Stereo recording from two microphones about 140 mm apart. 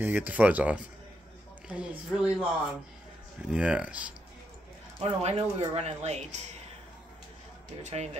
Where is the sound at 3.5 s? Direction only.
5° right (ahead or behind).